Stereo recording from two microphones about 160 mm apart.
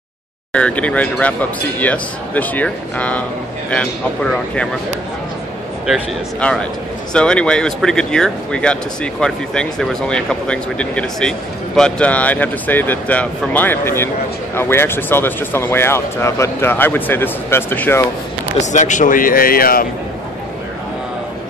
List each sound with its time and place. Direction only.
0.5 s speech: 5° left (ahead or behind)
6.4 s speech: 5° left (ahead or behind)
18.6 s a man's voice: 50° left (ahead or behind); by 19.9 s 65° left (ahead or behind)